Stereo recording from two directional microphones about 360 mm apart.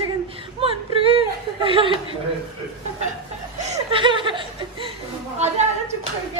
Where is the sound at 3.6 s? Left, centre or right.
Centre.